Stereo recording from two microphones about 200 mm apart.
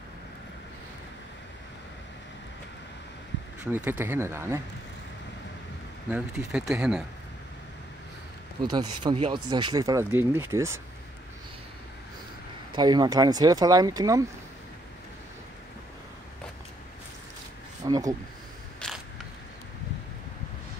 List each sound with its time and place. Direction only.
4.0 s speech: 10° right (ahead or behind)
6.0 s speech: 5° right (ahead or behind)
8.6 s speech: 20° right (ahead or behind)
12.7 s speech: 20° right (ahead or behind)
17.8 s speech: 20° right (ahead or behind)
18.8 s mechanisms: 5° left (ahead or behind)